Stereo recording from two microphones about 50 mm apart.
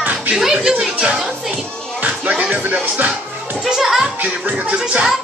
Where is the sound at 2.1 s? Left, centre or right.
Right.